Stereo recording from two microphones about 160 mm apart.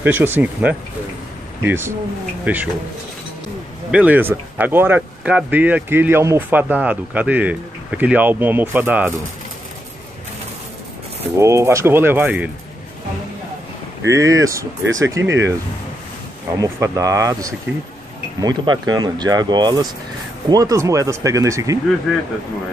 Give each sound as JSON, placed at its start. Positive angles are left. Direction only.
{"t": 0.0, "sound": "speech", "side_deg": -10}
{"t": 3.9, "sound": "speech", "side_deg": -10}
{"t": 11.3, "sound": "speech", "side_deg": -20}
{"t": 14.0, "sound": "speech", "side_deg": -20}
{"t": 16.5, "sound": "speech", "side_deg": -20}